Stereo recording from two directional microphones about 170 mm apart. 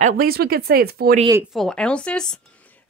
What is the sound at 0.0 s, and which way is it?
Speech, 60° right (ahead or behind).